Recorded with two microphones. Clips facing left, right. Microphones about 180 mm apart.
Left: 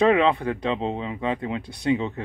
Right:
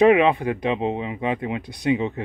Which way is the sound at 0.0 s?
15° right (ahead or behind).